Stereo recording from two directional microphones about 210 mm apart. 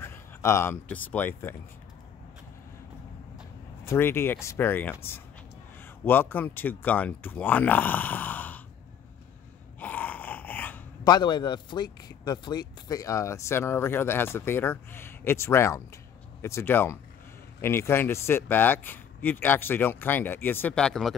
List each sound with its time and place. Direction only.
0.0 s speech: 10° left (ahead or behind)
3.8 s speech: 10° left (ahead or behind)
6.0 s speech: 10° left (ahead or behind)
9.8 s a sound: 10° left (ahead or behind)
11.1 s speech: 20° left (ahead or behind); by 21.1 s 5° left (ahead or behind)